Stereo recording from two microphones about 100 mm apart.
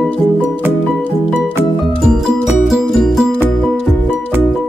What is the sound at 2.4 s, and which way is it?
Music, centre (ahead or behind).